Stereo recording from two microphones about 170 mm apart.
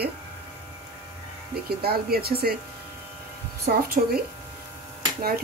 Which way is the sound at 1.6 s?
65° right (ahead or behind).